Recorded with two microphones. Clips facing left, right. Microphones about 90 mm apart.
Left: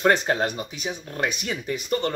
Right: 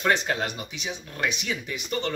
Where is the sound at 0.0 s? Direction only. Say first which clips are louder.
Left 4 dB; 35° left (ahead or behind).